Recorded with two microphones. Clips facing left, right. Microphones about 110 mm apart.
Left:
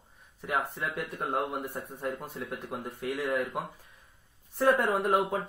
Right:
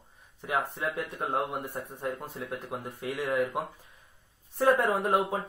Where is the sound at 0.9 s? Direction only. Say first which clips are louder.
Left 1 dB; centre (ahead or behind).